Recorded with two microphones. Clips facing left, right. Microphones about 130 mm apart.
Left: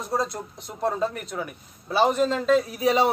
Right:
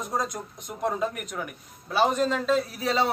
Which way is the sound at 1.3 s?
10° left (ahead or behind).